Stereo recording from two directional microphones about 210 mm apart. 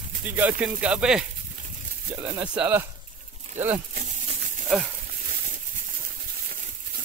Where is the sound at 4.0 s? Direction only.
35° right (ahead or behind).